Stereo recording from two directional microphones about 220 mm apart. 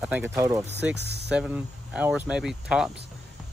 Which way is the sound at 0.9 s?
50° right (ahead or behind).